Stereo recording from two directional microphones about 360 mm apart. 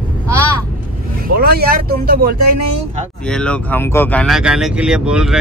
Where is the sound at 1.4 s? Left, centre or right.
Right.